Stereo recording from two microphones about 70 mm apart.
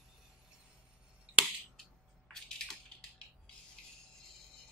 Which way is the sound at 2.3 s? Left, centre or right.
Centre.